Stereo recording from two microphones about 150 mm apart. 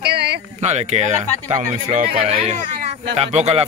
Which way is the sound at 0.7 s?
50° right (ahead or behind).